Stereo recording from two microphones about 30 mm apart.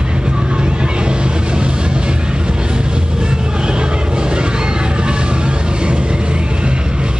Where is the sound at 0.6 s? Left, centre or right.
Right.